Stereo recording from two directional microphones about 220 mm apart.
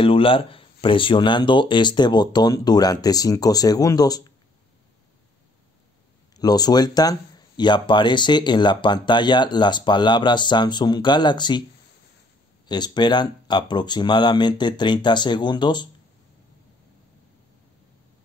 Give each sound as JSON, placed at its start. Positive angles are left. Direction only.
{"t": 0.0, "sound": "speech", "side_deg": 25}
{"t": 6.3, "sound": "speech", "side_deg": 15}
{"t": 12.6, "sound": "speech", "side_deg": 20}